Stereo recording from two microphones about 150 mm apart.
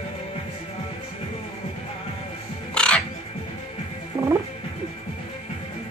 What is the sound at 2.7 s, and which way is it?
Music, 5° left (ahead or behind).